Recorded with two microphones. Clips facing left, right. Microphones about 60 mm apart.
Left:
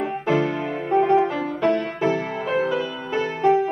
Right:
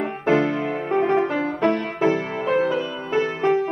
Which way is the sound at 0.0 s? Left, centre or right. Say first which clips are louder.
Right 2 dB; right.